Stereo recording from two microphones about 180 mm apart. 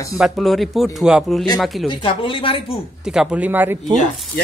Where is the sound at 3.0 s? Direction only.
5° right (ahead or behind).